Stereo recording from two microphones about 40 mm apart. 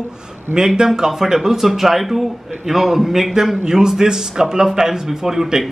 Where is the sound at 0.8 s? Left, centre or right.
Centre.